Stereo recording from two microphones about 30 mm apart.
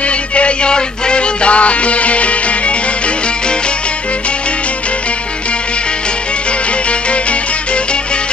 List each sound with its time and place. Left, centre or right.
0.4 s music: left
6.9 s music: left